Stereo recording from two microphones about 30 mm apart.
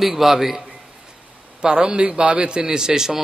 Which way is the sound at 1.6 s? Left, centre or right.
Right.